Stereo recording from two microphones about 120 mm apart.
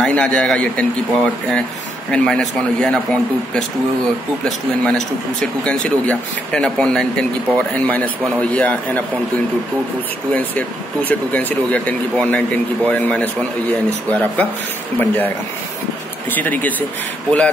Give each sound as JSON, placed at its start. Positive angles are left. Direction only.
{"t": 0.0, "sound": "speech", "side_deg": 5}
{"t": 10.3, "sound": "speech", "side_deg": 15}